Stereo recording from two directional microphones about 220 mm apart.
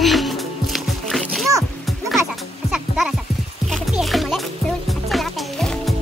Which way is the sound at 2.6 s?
Centre (ahead or behind).